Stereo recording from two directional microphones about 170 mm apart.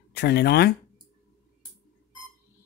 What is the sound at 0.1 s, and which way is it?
Speech, 75° left (ahead or behind).